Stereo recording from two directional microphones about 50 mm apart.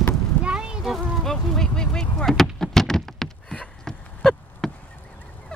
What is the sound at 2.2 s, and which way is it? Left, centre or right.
Vehicle, centre.